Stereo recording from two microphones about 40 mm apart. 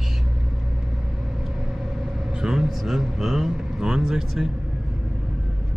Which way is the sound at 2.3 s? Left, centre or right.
Centre.